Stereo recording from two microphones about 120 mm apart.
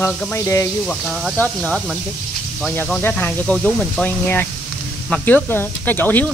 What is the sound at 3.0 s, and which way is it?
Speech, 15° left (ahead or behind).